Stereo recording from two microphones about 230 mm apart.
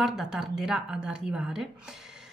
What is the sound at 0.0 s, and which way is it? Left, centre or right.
A woman's voice, centre.